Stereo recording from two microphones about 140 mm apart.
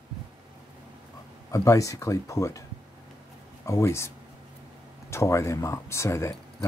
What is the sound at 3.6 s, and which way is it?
Speech, 20° left (ahead or behind).